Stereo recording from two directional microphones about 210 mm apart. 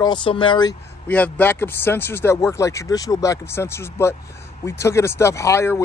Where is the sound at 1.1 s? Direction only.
10° left (ahead or behind).